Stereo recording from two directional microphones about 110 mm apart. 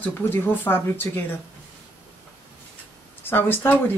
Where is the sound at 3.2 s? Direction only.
20° left (ahead or behind).